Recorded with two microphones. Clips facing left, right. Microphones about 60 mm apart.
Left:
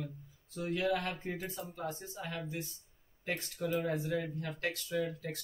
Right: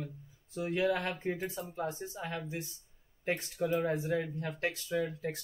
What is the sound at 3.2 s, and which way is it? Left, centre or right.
Speech, centre.